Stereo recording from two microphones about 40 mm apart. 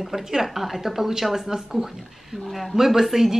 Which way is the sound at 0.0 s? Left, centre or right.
Centre.